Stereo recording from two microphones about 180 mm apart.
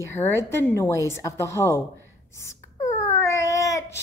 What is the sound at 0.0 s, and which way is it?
A woman's voice, 15° left (ahead or behind).